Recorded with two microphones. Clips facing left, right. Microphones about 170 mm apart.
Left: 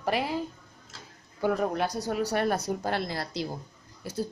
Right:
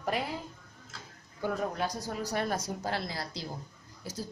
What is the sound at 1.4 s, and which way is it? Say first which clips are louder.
Speech: left 5 dB; 65° left (ahead or behind).